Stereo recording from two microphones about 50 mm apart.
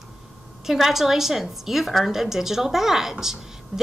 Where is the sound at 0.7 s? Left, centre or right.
Centre.